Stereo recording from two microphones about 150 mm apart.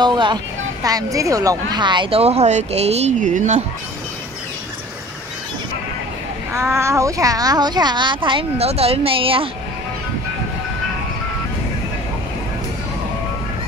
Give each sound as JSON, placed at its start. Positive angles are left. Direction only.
{"t": 0.0, "sound": "a woman's voice", "side_deg": -30}
{"t": 6.5, "sound": "a woman's voice", "side_deg": -20}